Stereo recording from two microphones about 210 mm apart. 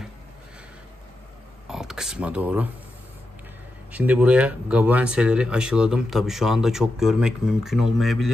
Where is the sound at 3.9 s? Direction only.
5° right (ahead or behind).